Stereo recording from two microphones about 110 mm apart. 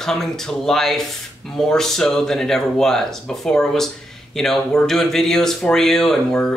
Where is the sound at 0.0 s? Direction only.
5° left (ahead or behind).